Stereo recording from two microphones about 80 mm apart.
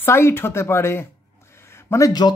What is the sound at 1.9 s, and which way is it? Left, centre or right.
Speech, left.